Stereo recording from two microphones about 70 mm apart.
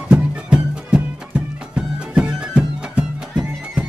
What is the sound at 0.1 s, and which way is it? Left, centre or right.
Music, centre.